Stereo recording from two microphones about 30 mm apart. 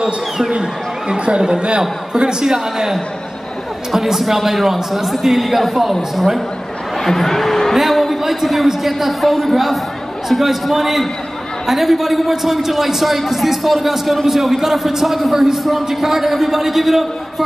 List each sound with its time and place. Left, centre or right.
0.5 s a man's voice: right
3.9 s a woman's voice: centre
7.0 s speech: centre
7.7 s a sound: centre
8.3 s a man's voice: centre